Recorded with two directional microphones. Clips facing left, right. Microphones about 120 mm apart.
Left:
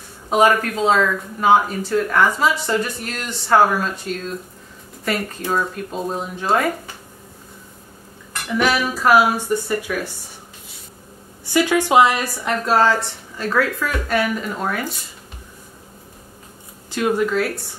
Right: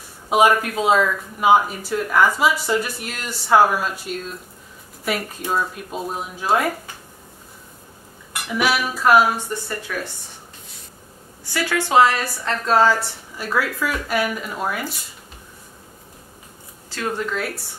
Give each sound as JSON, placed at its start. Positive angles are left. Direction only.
{"t": 0.3, "sound": "speech", "side_deg": -10}
{"t": 8.3, "sound": "speech", "side_deg": -10}
{"t": 11.5, "sound": "a woman's voice", "side_deg": 15}
{"t": 12.6, "sound": "speech", "side_deg": 0}
{"t": 16.9, "sound": "speech", "side_deg": 15}